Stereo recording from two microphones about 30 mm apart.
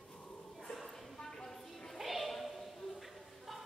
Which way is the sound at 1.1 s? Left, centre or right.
Centre.